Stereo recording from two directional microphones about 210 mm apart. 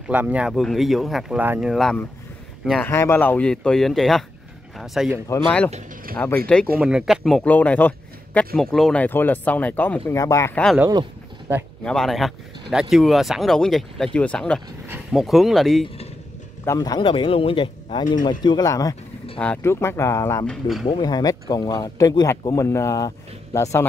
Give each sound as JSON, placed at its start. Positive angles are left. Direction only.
{"t": 0.1, "sound": "speech", "side_deg": -5}
{"t": 6.1, "sound": "speech", "side_deg": 5}
{"t": 10.9, "sound": "vehicle", "side_deg": -15}
{"t": 11.8, "sound": "speech", "side_deg": 0}
{"t": 16.6, "sound": "speech", "side_deg": 20}
{"t": 19.3, "sound": "speech", "side_deg": 5}
{"t": 20.4, "sound": "speech", "side_deg": 0}
{"t": 20.9, "sound": "speech", "side_deg": 20}